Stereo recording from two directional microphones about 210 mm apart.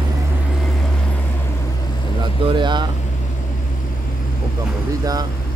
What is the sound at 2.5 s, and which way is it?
Speech, 20° right (ahead or behind).